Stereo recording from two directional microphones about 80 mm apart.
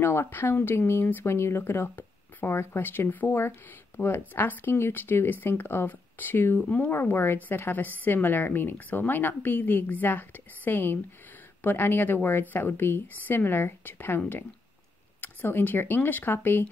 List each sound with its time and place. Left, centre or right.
0.0 s speech: left
6.6 s speech: centre
6.9 s speech: left